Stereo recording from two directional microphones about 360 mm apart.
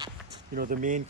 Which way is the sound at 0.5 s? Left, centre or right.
Right.